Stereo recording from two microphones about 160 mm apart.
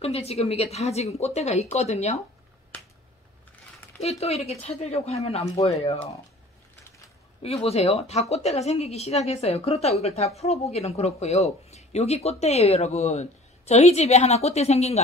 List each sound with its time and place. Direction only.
0.0 s a woman's voice: 40° left (ahead or behind)
4.0 s a woman's voice: 40° left (ahead or behind)
7.4 s a woman's voice: 40° left (ahead or behind)